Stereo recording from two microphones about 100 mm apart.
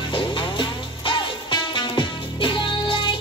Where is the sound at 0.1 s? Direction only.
55° left (ahead or behind).